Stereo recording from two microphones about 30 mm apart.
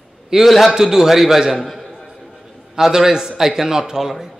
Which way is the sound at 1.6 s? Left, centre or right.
Centre.